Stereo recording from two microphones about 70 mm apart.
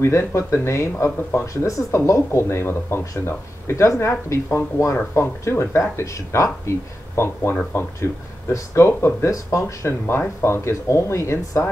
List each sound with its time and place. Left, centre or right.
0.0 s speech: left
2.4 s speech: left